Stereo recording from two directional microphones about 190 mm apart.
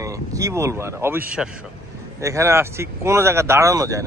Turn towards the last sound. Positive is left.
turn(degrees=-15)  # may be behind; listen again after turning